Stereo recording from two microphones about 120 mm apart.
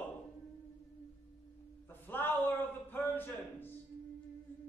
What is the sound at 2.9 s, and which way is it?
Music, 15° left (ahead or behind).